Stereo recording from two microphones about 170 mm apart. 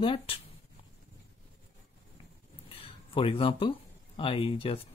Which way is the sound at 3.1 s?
30° left (ahead or behind).